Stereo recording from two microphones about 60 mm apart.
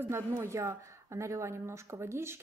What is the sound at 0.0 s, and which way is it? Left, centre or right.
A woman's voice, right.